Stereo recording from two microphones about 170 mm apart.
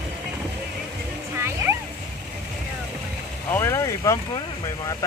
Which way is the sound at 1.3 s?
15° right (ahead or behind).